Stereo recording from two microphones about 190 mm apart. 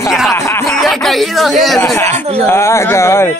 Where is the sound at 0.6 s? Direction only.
Centre (ahead or behind).